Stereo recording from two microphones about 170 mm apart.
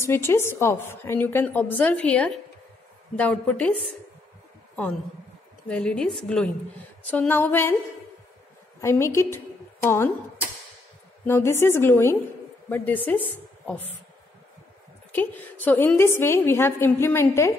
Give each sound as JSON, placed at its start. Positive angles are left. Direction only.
{"t": 0.0, "sound": "a woman's voice", "side_deg": 15}
{"t": 5.7, "sound": "a woman's voice", "side_deg": 5}
{"t": 8.8, "sound": "a woman's voice", "side_deg": 15}
{"t": 11.2, "sound": "a woman's voice", "side_deg": 15}
{"t": 15.1, "sound": "a woman's voice", "side_deg": 10}